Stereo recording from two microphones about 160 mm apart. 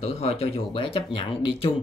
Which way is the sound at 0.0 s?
40° left (ahead or behind).